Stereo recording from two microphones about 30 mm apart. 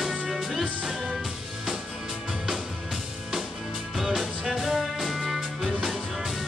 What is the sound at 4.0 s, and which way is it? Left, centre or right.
Music, centre.